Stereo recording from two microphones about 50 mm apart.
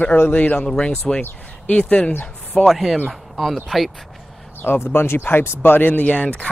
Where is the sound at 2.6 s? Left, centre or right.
Centre.